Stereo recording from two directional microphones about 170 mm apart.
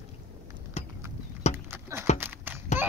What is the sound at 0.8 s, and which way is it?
Clip-clop, 40° left (ahead or behind).